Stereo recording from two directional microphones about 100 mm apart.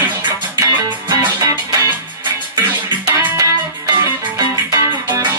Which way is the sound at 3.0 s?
35° right (ahead or behind).